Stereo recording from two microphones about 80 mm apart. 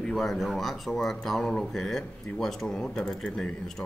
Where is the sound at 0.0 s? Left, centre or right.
Centre.